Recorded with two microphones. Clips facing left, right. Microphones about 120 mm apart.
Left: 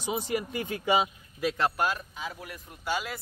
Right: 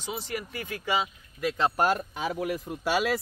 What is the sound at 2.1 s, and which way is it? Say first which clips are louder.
Speech: right 9 dB; 80° right.